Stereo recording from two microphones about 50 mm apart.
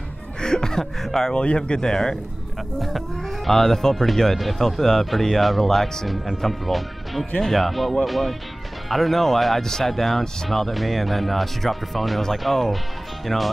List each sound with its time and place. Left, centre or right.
0.4 s speech: centre
1.3 s speech: left
2.8 s speech: centre